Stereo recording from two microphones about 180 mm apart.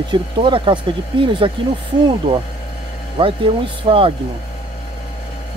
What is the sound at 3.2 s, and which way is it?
Speech, 30° right (ahead or behind).